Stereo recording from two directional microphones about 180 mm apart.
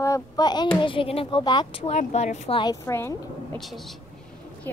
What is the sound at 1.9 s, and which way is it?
Speech, 40° left (ahead or behind).